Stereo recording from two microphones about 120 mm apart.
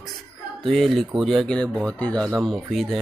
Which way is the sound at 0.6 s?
Centre (ahead or behind).